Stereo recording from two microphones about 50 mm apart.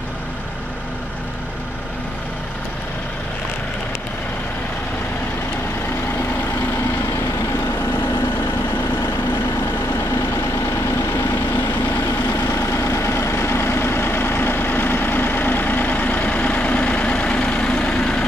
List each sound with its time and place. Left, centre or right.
12.4 s vehicle: left; by 18.2 s centre